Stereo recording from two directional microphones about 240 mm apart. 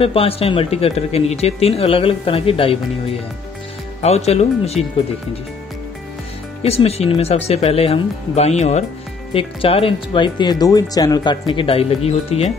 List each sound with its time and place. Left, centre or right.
0.0 s speech: left
6.6 s speech: left